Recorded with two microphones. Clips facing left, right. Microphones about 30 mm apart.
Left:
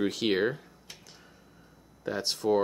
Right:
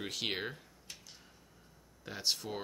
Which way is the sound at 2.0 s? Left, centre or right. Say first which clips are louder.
Left 6 dB; centre.